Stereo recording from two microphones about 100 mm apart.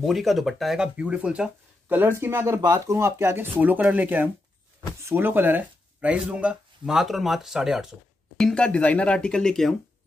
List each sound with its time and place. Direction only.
0.0 s speech: centre (ahead or behind)
8.4 s speech: 5° left (ahead or behind)